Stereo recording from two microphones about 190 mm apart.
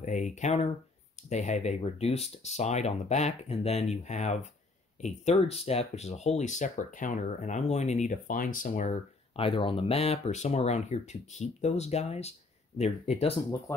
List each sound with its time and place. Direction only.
0.0 s speech: 40° left (ahead or behind)
13.7 s speech: 15° left (ahead or behind)